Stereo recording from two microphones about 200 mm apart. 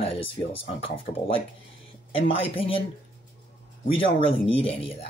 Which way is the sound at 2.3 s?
25° left (ahead or behind).